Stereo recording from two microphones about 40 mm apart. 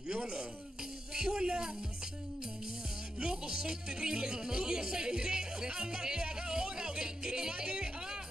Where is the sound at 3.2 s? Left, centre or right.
Centre.